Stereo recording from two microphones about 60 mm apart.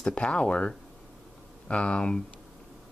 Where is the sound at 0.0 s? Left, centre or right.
Centre.